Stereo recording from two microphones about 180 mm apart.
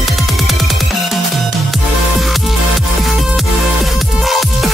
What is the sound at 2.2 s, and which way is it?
Music, centre (ahead or behind).